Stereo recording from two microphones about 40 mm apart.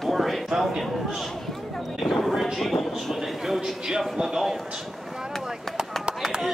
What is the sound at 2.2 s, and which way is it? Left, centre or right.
Speech, centre.